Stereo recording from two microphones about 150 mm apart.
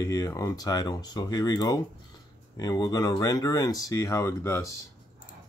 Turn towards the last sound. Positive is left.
turn(degrees=20)  # may be behind; listen again after turning